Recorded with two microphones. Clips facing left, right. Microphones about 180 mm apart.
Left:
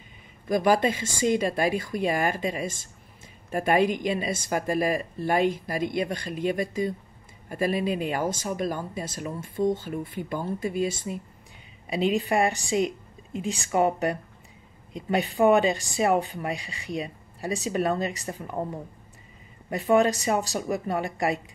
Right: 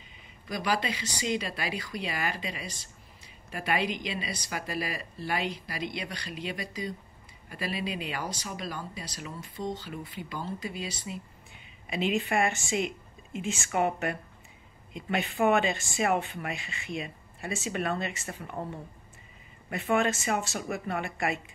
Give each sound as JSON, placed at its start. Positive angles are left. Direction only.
{"t": 0.5, "sound": "speech", "side_deg": 50}
{"t": 11.9, "sound": "speech", "side_deg": 35}